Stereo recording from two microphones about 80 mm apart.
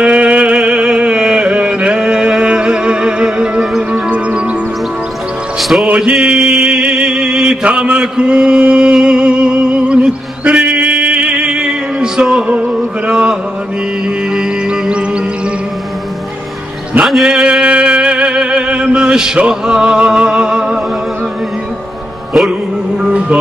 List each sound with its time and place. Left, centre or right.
0.0 s music: centre
5.6 s music: centre
5.9 s music: centre
6.1 s mantra: centre
13.1 s music: centre
17.0 s music: centre
23.0 s music: centre